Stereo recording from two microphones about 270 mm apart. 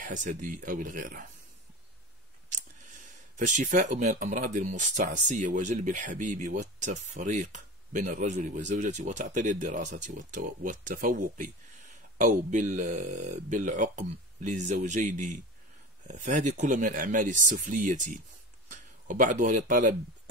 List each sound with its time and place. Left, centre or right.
0.0 s speech: right
2.5 s speech: right